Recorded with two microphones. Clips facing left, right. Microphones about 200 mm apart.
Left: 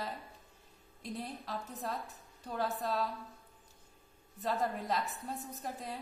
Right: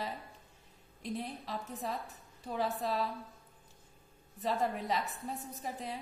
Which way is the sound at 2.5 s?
Centre (ahead or behind).